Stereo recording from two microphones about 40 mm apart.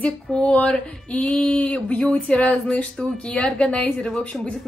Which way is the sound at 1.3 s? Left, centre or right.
Left.